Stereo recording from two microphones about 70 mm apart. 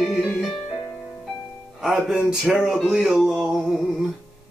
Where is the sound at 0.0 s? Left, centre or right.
Centre.